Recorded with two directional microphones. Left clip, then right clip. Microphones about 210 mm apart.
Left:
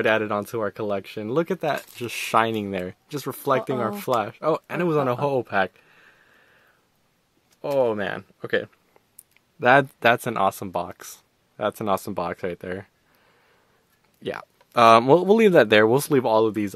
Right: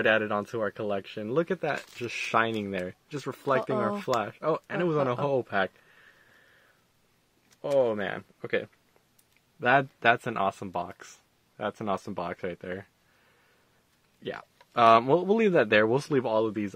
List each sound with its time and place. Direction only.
0.0 s speech: 40° left (ahead or behind)
7.6 s speech: 35° left (ahead or behind)
14.2 s speech: 35° left (ahead or behind)